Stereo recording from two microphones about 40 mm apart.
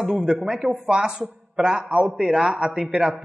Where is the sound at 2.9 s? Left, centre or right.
Right.